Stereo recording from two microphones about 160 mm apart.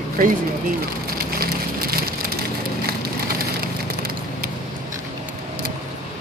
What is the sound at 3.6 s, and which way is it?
Splinter, 70° right (ahead or behind).